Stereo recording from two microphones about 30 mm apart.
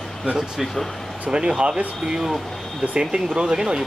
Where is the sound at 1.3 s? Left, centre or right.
Right.